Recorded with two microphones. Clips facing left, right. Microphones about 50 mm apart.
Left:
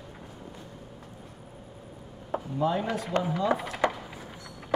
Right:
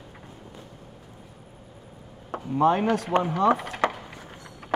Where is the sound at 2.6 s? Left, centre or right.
Right.